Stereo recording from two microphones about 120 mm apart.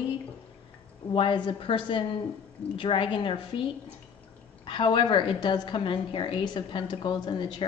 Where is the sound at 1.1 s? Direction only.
45° left (ahead or behind).